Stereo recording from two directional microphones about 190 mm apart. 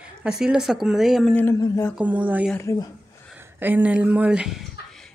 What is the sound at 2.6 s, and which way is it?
Speech, 15° left (ahead or behind).